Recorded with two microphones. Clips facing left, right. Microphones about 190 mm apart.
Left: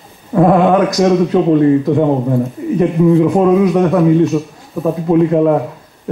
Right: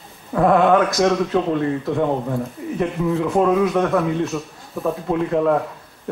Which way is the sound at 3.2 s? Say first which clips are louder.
Left 6 dB; 15° left (ahead or behind).